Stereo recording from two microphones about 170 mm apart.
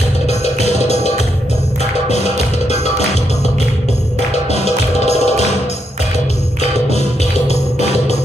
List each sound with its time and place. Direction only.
0.3 s music: 40° left (ahead or behind)
4.5 s music: 40° left (ahead or behind)
6.9 s music: 40° left (ahead or behind)